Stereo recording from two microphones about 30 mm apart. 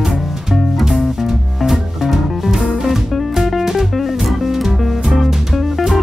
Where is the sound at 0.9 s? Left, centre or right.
Centre.